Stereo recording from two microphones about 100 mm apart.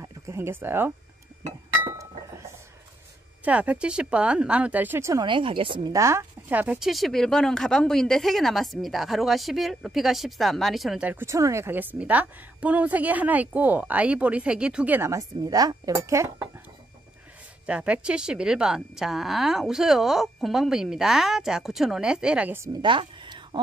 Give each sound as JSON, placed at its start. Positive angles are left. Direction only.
{"t": 0.0, "sound": "speech", "side_deg": -30}
{"t": 2.0, "sound": "chink", "side_deg": -30}
{"t": 3.4, "sound": "a woman's voice", "side_deg": -15}
{"t": 5.2, "sound": "a woman's voice", "side_deg": -55}
{"t": 5.9, "sound": "speech", "side_deg": -30}
{"t": 6.5, "sound": "a woman's voice", "side_deg": -15}
{"t": 6.8, "sound": "a woman's voice", "side_deg": 0}
{"t": 11.0, "sound": "a woman's voice", "side_deg": -15}
{"t": 11.2, "sound": "a woman's voice", "side_deg": -30}
{"t": 15.0, "sound": "speech", "side_deg": -30}
{"t": 15.4, "sound": "speech", "side_deg": -40}
{"t": 15.9, "sound": "speech", "side_deg": -30}
{"t": 17.6, "sound": "a woman's voice", "side_deg": -10}
{"t": 22.8, "sound": "a sound", "side_deg": -55}